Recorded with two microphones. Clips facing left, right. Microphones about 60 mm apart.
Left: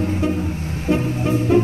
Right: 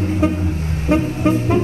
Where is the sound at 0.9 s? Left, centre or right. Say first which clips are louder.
Right 3 dB; right.